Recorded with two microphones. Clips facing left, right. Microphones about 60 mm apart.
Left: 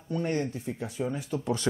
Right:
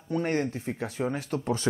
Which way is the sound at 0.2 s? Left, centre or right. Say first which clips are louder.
Right 1 dB; right.